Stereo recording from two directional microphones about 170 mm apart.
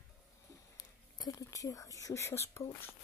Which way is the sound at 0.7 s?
25° left (ahead or behind).